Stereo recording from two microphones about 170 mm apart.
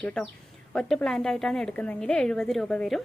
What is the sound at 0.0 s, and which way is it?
Speech, 5° left (ahead or behind).